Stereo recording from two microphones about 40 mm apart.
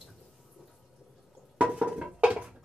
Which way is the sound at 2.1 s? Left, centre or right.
Right.